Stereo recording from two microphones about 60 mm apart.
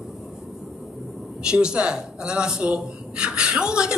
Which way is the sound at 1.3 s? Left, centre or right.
Centre.